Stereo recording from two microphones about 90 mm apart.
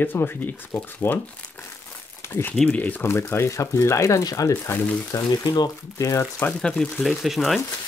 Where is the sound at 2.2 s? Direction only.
25° left (ahead or behind).